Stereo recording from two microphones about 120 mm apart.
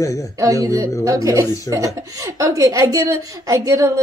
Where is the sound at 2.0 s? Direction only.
25° right (ahead or behind).